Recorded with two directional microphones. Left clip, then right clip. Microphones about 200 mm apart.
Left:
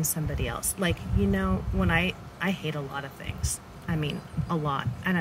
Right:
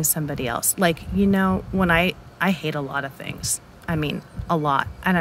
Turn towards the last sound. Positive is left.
turn(degrees=-50)  # may be behind; listen again after turning